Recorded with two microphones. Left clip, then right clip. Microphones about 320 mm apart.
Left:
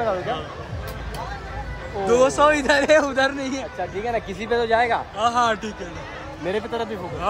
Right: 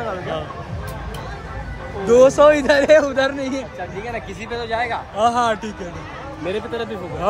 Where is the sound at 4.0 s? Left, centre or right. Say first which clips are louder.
Left 3 dB; left.